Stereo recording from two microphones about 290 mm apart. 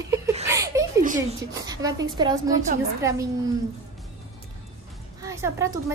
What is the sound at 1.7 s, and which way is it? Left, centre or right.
A woman's voice, centre.